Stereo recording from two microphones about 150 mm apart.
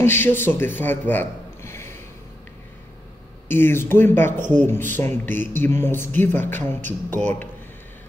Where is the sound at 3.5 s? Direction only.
15° left (ahead or behind).